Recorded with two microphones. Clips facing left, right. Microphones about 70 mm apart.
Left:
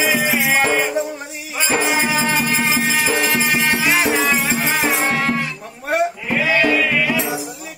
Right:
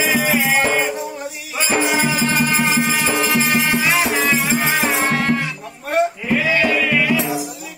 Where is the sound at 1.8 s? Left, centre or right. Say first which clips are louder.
Right 1 dB; left.